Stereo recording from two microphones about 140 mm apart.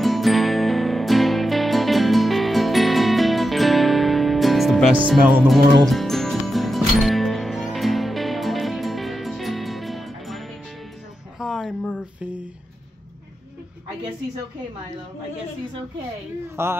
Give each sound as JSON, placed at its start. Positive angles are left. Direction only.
{"t": 0.0, "sound": "music", "side_deg": 0}
{"t": 11.3, "sound": "a sound", "side_deg": -5}
{"t": 16.6, "sound": "speech", "side_deg": -15}